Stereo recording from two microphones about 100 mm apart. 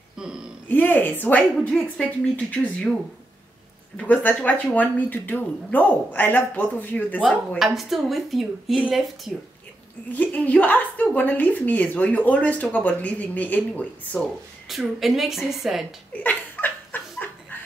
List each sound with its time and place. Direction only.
0.7 s a woman's voice: 20° left (ahead or behind)
3.9 s a woman's voice: 15° left (ahead or behind)
7.5 s a woman's voice: centre (ahead or behind)
10.1 s a woman's voice: 15° left (ahead or behind)
14.7 s a woman's voice: centre (ahead or behind)
16.1 s laughter: 15° left (ahead or behind)